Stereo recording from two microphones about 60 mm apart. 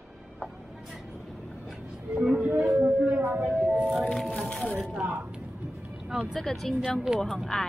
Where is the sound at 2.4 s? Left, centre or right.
Right.